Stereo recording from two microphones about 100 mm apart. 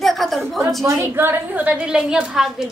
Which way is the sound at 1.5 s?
10° right (ahead or behind).